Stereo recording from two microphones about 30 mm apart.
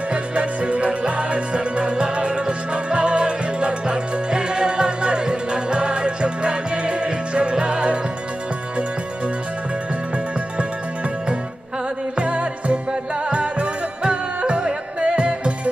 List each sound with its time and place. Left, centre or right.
0.1 s music: right
12.2 s music: right